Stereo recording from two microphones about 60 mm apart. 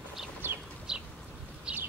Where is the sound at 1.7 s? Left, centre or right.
Centre.